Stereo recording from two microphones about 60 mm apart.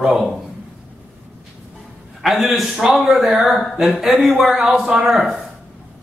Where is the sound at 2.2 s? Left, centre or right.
Centre.